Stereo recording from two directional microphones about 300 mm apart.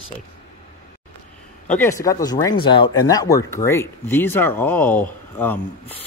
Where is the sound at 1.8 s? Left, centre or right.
Centre.